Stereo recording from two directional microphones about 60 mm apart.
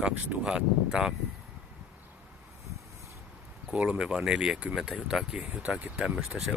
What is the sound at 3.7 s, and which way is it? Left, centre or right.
Speech, centre.